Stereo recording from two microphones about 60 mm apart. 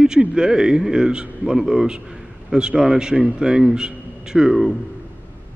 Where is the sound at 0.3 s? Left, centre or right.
Centre.